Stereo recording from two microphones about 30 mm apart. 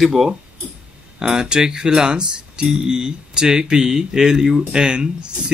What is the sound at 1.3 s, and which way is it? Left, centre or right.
Speech, right.